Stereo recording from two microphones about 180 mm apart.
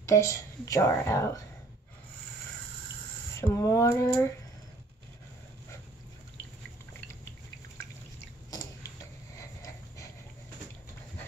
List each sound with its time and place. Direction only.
0.0 s a woman's voice: 15° left (ahead or behind)
3.3 s a woman's voice: 15° left (ahead or behind)
8.5 s tick-tock: 20° left (ahead or behind)
9.4 s a sound: 20° left (ahead or behind)